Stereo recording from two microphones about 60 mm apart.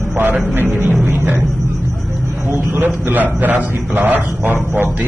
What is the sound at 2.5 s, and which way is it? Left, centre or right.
A man's voice, right.